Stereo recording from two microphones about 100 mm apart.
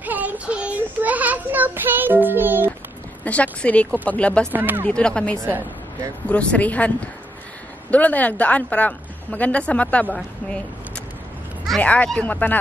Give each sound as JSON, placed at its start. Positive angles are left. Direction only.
{"t": 0.0, "sound": "child singing", "side_deg": -15}
{"t": 3.3, "sound": "a woman's voice", "side_deg": 15}
{"t": 4.5, "sound": "speech", "side_deg": -20}
{"t": 4.8, "sound": "a woman's voice", "side_deg": 10}
{"t": 7.9, "sound": "a woman's voice", "side_deg": 15}
{"t": 11.8, "sound": "a woman's voice", "side_deg": 15}